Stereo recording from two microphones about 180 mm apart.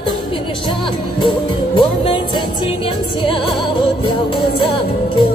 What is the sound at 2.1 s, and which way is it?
Music, 30° left (ahead or behind).